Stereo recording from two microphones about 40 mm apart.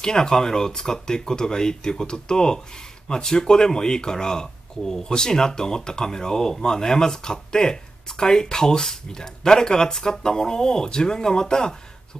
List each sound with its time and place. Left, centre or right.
0.0 s speech: centre